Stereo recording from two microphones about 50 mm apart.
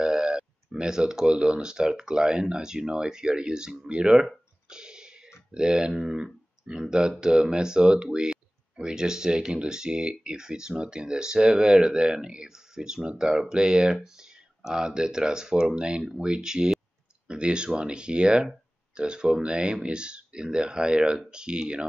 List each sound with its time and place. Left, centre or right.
0.0 s speech: centre
4.6 s a sound: centre
5.5 s speech: centre